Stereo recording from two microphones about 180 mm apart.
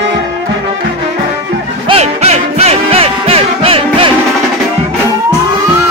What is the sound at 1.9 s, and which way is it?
Music, 35° right (ahead or behind).